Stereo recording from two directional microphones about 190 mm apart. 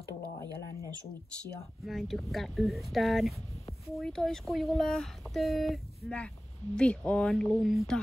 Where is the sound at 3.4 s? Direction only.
30° left (ahead or behind).